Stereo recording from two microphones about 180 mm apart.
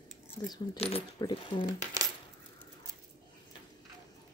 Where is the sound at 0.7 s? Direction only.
30° left (ahead or behind).